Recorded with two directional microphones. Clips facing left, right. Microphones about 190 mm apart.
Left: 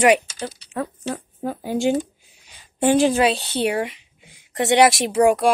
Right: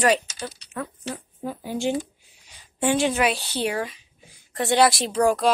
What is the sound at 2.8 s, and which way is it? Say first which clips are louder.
A woman's voice: left 5 dB; 35° left (ahead or behind).